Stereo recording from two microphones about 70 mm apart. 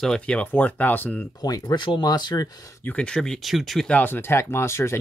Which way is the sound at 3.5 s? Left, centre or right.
Centre.